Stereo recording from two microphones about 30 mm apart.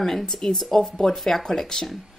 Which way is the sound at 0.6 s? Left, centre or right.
Centre.